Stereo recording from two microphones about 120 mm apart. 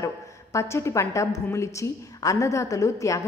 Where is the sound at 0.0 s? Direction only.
25° left (ahead or behind).